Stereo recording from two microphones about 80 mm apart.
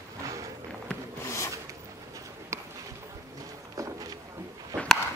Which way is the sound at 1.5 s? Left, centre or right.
Right.